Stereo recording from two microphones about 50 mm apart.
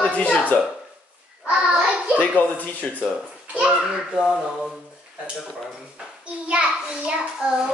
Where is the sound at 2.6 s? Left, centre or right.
Left.